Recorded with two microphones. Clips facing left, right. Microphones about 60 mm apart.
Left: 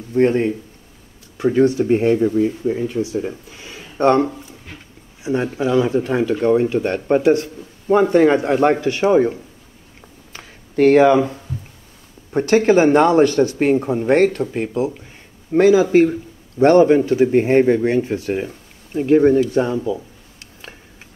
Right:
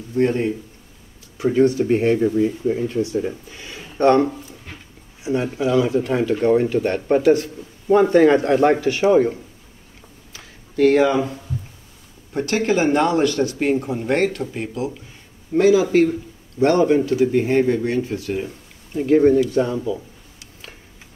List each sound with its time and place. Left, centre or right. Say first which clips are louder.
0.1 s a man's voice: left 3 dB; left
2.0 s speech: left 2 dB; centre
5.3 s a man's voice: left 1 dB; left
6.3 s speech: left 1 dB; left
10.3 s a sound: left 4 dB; left
12.3 s a man's voice: left 6 dB; left